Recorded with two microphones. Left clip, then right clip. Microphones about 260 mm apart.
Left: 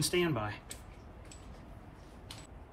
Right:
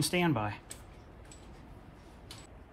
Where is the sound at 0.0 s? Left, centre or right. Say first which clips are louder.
Right 1 dB; right.